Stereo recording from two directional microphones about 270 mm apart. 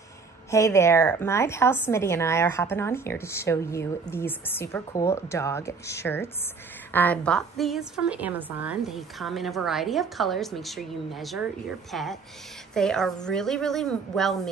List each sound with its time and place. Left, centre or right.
0.5 s a woman's voice: centre